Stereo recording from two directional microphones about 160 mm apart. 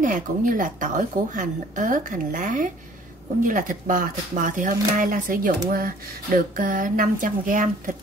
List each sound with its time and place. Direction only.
0.0 s a woman's voice: 55° right (ahead or behind)